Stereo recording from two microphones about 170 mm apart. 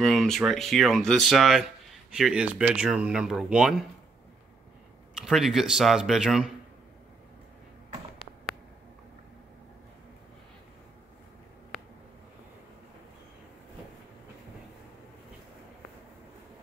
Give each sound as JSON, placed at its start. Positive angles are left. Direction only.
{"t": 0.0, "sound": "speech", "side_deg": 0}
{"t": 5.1, "sound": "speech", "side_deg": -5}